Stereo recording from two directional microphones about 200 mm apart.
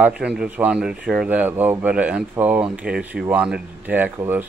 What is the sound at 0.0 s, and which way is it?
Speech, 5° right (ahead or behind).